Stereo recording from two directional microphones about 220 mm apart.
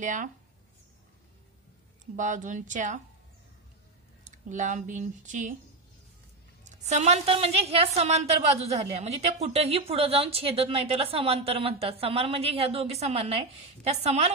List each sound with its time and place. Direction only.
0.0 s a woman's voice: 35° right (ahead or behind)
2.1 s a woman's voice: 35° right (ahead or behind)
4.2 s speech: 35° right (ahead or behind)
6.9 s a woman's voice: 30° right (ahead or behind)